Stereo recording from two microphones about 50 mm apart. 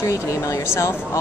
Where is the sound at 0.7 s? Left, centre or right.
Left.